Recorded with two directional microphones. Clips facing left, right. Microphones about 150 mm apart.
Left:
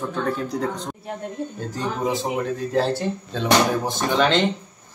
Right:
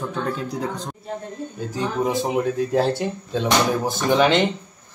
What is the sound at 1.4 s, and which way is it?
Music, 60° left (ahead or behind).